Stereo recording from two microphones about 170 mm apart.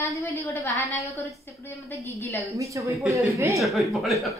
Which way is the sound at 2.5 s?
20° right (ahead or behind).